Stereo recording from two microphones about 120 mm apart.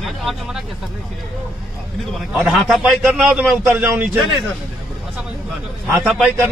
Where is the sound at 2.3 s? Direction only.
5° right (ahead or behind).